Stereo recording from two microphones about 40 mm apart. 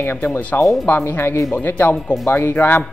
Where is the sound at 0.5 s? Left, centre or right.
Left.